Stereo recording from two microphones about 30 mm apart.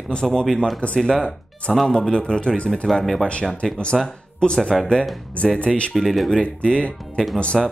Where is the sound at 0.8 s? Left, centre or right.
Left.